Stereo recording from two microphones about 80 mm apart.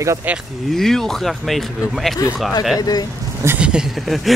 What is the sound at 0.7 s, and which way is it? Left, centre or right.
Speech, centre.